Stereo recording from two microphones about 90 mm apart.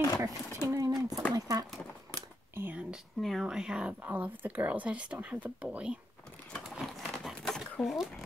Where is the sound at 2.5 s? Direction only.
25° right (ahead or behind).